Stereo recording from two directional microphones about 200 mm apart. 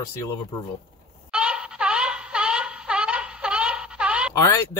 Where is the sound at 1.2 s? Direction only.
5° right (ahead or behind).